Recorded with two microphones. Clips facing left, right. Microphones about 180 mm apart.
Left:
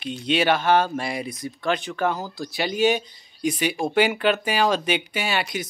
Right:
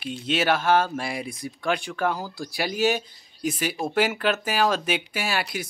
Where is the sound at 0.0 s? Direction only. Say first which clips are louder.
Left 3 dB; 5° right (ahead or behind).